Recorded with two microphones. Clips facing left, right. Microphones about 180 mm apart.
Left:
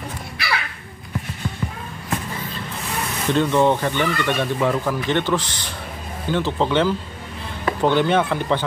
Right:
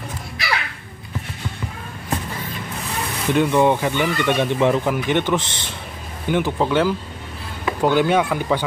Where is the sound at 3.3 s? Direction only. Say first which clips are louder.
Right 1 dB; 15° right (ahead or behind).